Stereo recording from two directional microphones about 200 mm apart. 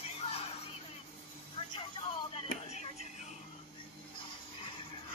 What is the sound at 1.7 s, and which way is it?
Vehicle, 25° left (ahead or behind).